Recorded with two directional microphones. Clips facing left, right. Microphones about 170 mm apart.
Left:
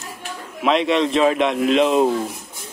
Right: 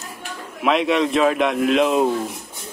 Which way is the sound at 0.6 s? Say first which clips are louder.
Left 1 dB; centre (ahead or behind).